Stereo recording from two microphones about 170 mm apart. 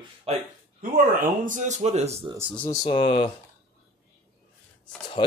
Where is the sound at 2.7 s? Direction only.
25° left (ahead or behind).